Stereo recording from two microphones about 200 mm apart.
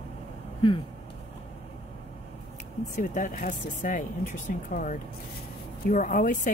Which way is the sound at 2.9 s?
40° left (ahead or behind).